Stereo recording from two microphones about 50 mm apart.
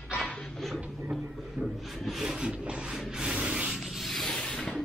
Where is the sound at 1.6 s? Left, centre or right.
Right.